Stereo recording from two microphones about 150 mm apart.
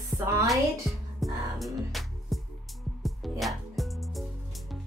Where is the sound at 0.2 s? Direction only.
20° right (ahead or behind).